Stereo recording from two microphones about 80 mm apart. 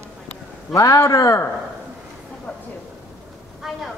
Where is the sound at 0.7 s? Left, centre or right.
Left.